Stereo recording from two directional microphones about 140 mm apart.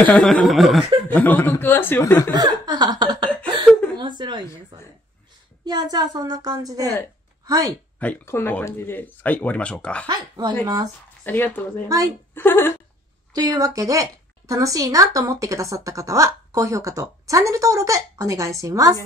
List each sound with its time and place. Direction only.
0.0 s speech: 10° left (ahead or behind)
1.0 s speech: 10° left (ahead or behind)
2.3 s speech: 30° right (ahead or behind)
4.0 s a sound: 30° right (ahead or behind)
4.7 s a woman's voice: 35° right (ahead or behind)
8.0 s speech: 15° left (ahead or behind)
10.0 s a woman's voice: 30° right (ahead or behind)
11.2 s speech: 15° left (ahead or behind)
13.3 s a woman's voice: 25° right (ahead or behind)